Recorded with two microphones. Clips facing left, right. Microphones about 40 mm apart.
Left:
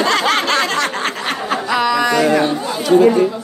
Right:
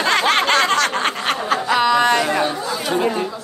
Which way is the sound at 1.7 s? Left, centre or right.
Right.